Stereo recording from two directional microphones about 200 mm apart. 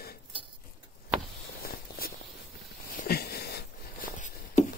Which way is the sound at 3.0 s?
50° left (ahead or behind).